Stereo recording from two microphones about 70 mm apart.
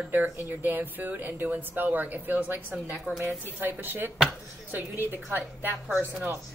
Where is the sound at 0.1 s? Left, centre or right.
Right.